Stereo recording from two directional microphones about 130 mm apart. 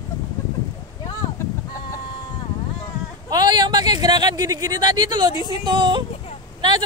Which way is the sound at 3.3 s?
30° right (ahead or behind).